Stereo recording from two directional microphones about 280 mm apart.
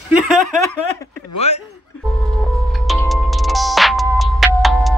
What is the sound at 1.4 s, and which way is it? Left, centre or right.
Chuckle, left.